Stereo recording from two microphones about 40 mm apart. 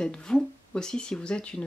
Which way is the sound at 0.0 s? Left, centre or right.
Centre.